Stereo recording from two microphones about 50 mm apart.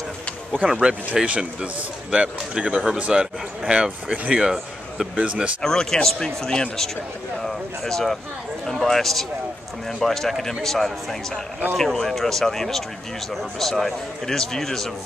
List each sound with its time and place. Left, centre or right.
0.7 s speech: centre
5.1 s speech: right
5.6 s speech: centre